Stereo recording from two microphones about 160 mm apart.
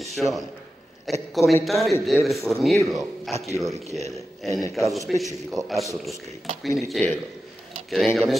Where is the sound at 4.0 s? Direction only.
20° left (ahead or behind).